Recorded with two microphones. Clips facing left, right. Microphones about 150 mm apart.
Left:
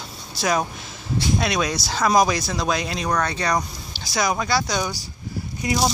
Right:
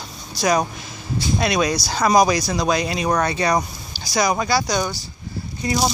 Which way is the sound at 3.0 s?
20° right (ahead or behind).